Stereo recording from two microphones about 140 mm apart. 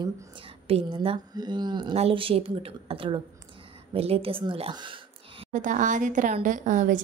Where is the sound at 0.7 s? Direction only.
45° right (ahead or behind).